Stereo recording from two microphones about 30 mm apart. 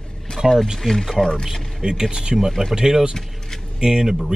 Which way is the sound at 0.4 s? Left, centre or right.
Right.